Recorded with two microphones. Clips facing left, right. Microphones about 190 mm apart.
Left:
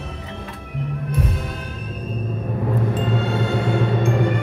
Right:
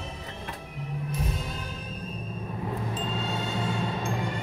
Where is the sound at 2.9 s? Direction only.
60° left (ahead or behind).